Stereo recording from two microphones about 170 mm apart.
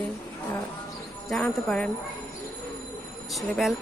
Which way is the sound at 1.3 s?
Centre (ahead or behind).